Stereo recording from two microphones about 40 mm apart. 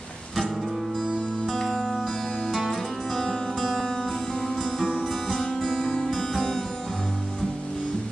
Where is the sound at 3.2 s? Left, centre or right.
Centre.